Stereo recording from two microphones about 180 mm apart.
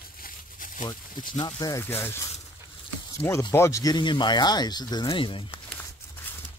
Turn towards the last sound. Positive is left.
turn(degrees=30)  # may be behind; listen again after turning